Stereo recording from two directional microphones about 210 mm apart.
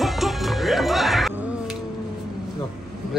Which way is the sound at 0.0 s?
Centre (ahead or behind).